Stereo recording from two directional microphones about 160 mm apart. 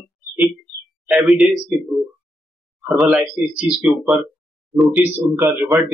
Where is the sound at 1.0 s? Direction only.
Centre (ahead or behind).